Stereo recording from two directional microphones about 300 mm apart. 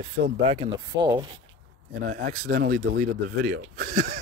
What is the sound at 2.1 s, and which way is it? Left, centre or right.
Speech, right.